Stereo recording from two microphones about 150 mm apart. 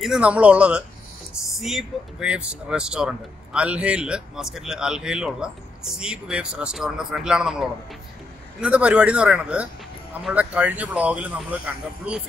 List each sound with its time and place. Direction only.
0.0 s speech: 5° right (ahead or behind)